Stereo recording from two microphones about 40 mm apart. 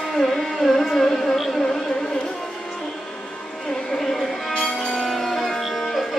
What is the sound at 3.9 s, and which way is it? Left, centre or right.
Music, centre.